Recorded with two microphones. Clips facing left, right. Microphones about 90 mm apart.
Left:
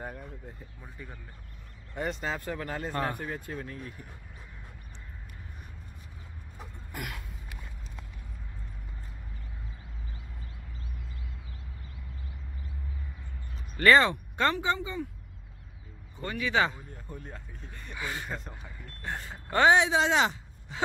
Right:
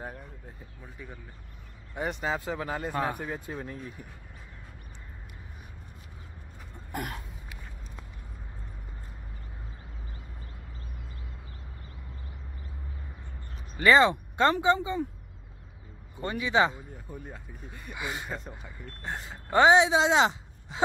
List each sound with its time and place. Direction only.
0.0 s speech: 5° right (ahead or behind)
2.2 s speech: 15° right (ahead or behind)
6.9 s a sound: 40° right (ahead or behind)
13.7 s speech: 15° right (ahead or behind)
16.2 s speech: 25° right (ahead or behind)
16.9 s speech: 5° right (ahead or behind)
18.3 s speech: centre (ahead or behind)
19.0 s speech: 20° right (ahead or behind)